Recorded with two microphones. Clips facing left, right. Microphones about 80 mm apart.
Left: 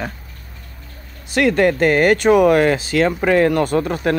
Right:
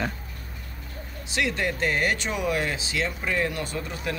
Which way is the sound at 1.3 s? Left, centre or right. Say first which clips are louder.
Left 12 dB; left.